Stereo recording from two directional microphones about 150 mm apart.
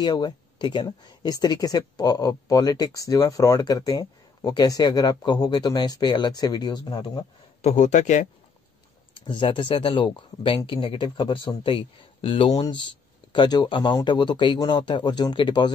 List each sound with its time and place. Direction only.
0.0 s speech: 30° left (ahead or behind)
7.6 s a man's voice: 50° left (ahead or behind)
9.1 s speech: 35° left (ahead or behind)